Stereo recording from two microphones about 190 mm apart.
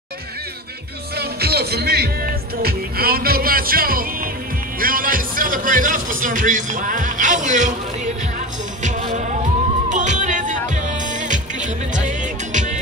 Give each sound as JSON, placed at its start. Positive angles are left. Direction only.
{"t": 1.1, "sound": "music", "side_deg": -55}